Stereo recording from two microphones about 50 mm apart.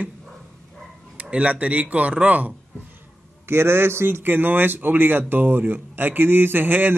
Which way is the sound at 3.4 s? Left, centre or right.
Right.